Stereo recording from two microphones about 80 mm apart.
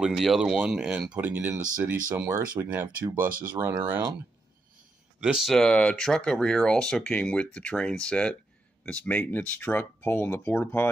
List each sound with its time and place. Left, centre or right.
0.0 s speech: centre; by 4.0 s right
5.2 s speech: centre
5.5 s speech: centre; by 10.9 s left